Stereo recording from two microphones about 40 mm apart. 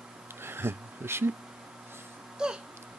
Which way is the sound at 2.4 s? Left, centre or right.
Centre.